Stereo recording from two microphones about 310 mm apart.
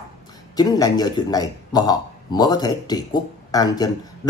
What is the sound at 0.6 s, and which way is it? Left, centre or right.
A man's voice, centre.